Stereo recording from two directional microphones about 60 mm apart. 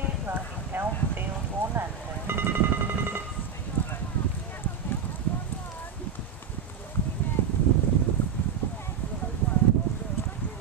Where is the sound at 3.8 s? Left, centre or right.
Left.